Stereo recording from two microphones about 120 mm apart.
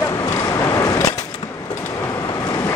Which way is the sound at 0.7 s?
30° left (ahead or behind).